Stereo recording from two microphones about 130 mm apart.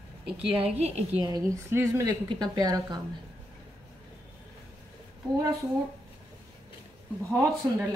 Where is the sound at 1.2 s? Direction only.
25° right (ahead or behind).